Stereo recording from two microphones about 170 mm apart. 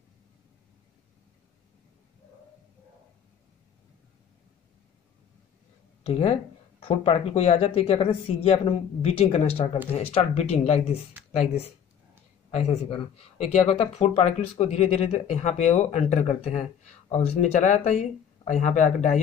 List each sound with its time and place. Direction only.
6.0 s speech: 40° left (ahead or behind)